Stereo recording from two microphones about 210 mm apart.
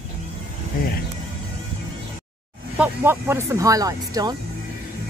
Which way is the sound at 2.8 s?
10° right (ahead or behind).